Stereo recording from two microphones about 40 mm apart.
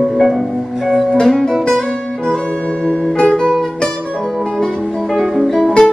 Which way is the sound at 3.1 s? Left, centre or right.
Left.